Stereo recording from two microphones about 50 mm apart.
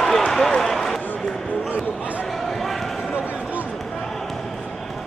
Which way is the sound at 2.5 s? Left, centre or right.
Centre.